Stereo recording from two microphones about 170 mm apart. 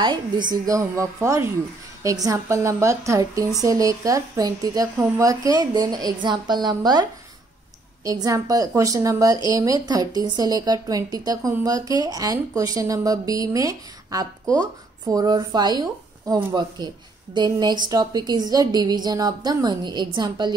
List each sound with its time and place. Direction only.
0.5 s speech: 20° right (ahead or behind)